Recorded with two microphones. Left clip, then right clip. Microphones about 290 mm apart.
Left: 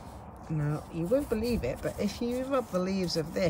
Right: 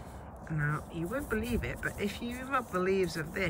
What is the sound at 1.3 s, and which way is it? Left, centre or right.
Speech, right.